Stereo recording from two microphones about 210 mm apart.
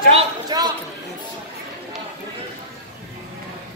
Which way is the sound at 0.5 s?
20° right (ahead or behind).